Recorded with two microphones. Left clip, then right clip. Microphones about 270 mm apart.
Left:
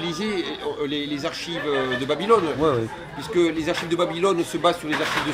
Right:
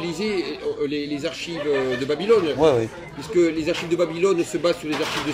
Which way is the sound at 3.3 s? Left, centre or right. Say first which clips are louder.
Right 1 dB; centre.